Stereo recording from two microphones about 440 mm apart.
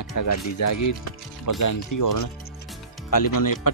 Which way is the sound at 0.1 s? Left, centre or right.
Left.